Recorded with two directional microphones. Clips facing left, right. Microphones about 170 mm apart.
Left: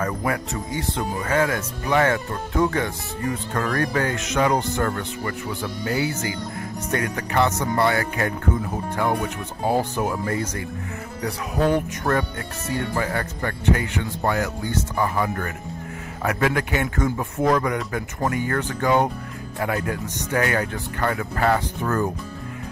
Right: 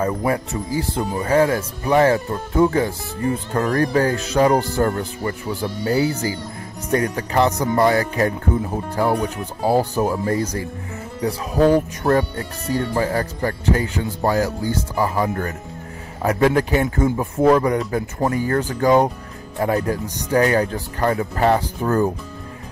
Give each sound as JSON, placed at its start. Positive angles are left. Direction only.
{"t": 0.0, "sound": "speech", "side_deg": -25}